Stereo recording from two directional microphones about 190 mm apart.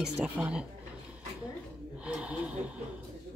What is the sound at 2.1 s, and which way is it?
Snort, 5° right (ahead or behind).